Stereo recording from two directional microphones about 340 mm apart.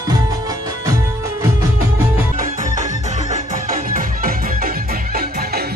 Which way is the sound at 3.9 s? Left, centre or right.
Right.